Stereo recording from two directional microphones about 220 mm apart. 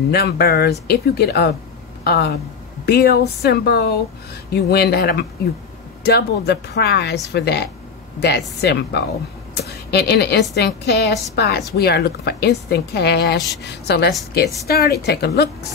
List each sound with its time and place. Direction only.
0.1 s a woman's voice: 45° left (ahead or behind)